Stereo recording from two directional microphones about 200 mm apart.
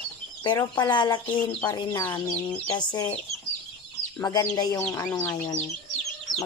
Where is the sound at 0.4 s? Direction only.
20° left (ahead or behind).